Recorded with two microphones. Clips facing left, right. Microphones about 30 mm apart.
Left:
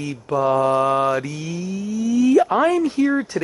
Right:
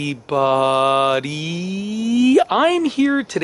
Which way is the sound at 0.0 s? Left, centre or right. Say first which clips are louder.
Right 2 dB; right.